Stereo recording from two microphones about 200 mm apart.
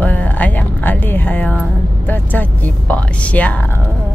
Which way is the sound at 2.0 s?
10° left (ahead or behind).